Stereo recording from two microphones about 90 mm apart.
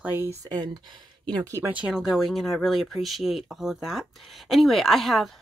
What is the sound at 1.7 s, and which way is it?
Speech, 10° right (ahead or behind).